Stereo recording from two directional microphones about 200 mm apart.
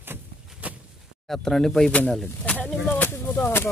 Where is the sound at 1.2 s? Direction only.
Centre (ahead or behind).